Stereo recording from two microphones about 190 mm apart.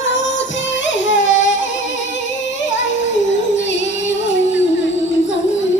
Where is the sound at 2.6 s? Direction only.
75° left (ahead or behind).